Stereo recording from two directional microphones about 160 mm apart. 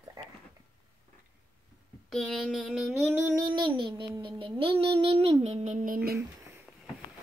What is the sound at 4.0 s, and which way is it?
Child singing, 30° right (ahead or behind).